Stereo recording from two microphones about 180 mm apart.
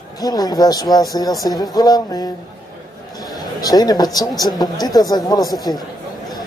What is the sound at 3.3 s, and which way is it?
A man's voice, 20° left (ahead or behind).